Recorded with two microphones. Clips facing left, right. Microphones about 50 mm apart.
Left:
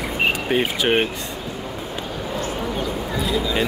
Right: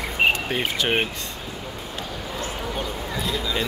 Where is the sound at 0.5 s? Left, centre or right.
Centre.